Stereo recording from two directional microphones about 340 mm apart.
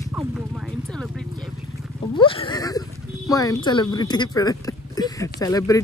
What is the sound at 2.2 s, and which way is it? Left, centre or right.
Speech, centre.